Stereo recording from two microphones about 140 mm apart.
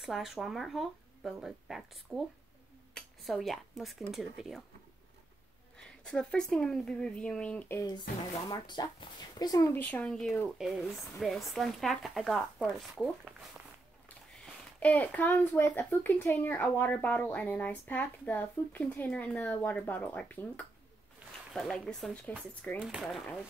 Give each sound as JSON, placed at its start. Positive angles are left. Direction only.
{"t": 0.0, "sound": "speech", "side_deg": 0}
{"t": 3.3, "sound": "speech", "side_deg": 0}
{"t": 5.8, "sound": "speech", "side_deg": 5}
{"t": 8.5, "sound": "speech", "side_deg": 30}
{"t": 9.8, "sound": "speech", "side_deg": 10}
{"t": 14.0, "sound": "speech", "side_deg": 10}